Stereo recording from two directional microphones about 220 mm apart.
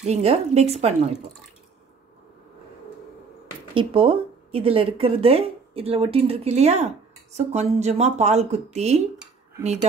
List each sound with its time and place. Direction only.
0.0 s speech: 30° right (ahead or behind)
3.7 s speech: 25° right (ahead or behind)